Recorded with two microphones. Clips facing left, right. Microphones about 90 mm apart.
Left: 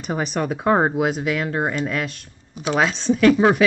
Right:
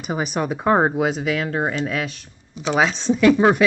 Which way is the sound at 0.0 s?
5° right (ahead or behind).